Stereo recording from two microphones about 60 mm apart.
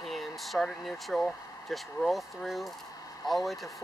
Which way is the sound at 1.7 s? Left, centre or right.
Centre.